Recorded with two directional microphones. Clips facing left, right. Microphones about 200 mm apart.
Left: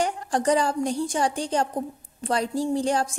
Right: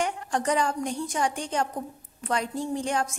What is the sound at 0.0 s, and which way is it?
A woman's voice, 35° left (ahead or behind).